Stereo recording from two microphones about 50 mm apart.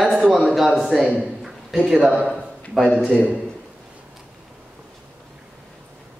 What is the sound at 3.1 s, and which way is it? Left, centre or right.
Speech, right.